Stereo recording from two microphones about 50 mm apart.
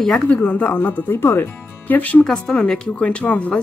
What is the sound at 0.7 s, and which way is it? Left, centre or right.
Speech, left.